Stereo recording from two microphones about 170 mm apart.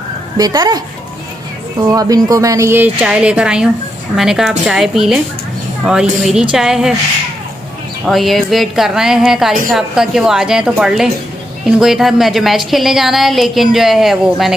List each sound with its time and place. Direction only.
0.4 s speech: 25° right (ahead or behind)
1.9 s a woman's voice: 20° right (ahead or behind); by 6.9 s 5° right (ahead or behind)
8.1 s a woman's voice: centre (ahead or behind)